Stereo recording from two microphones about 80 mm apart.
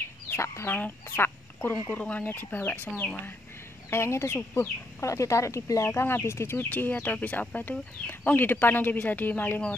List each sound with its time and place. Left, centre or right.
0.3 s chicken: left
0.7 s speech: left
1.1 s duck: left
2.0 s speech: left
3.9 s speech: left
5.9 s speech: left